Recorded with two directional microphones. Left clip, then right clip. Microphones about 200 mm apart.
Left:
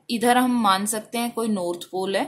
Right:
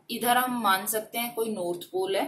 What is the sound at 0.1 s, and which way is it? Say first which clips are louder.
Speech: left 5 dB; 50° left (ahead or behind).